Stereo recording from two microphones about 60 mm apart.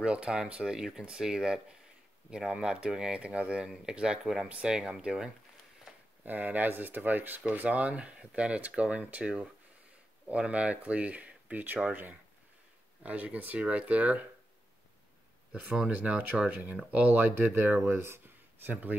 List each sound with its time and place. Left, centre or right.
0.0 s speech: centre
6.2 s speech: right
15.9 s speech: right